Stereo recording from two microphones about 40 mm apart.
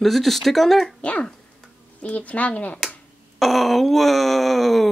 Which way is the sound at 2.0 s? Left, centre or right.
Left.